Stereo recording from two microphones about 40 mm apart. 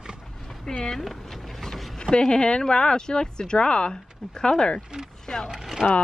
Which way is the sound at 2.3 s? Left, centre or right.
Left.